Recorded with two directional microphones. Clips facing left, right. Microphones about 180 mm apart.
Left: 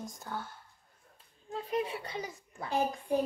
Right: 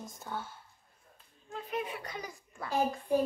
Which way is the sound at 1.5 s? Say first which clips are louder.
Left 3 dB; 35° left (ahead or behind).